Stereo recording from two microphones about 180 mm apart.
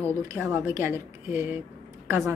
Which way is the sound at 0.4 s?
10° right (ahead or behind).